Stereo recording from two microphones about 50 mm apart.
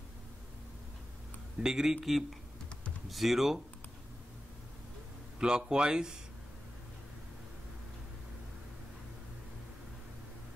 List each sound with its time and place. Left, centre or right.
1.6 s speech: centre
5.4 s speech: centre